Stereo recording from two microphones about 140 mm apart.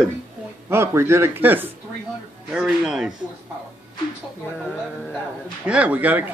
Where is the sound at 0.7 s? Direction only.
20° right (ahead or behind).